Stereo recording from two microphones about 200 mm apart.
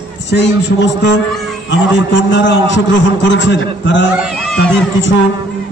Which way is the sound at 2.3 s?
65° left (ahead or behind).